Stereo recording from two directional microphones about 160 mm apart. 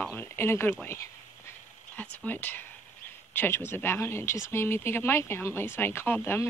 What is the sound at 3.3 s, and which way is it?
Speech, 15° left (ahead or behind).